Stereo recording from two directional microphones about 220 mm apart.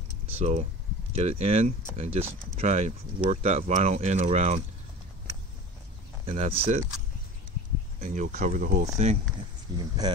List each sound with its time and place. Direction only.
0.3 s speech: 30° right (ahead or behind)
6.2 s speech: 25° right (ahead or behind)
8.0 s speech: 35° right (ahead or behind)
9.8 s speech: 20° right (ahead or behind)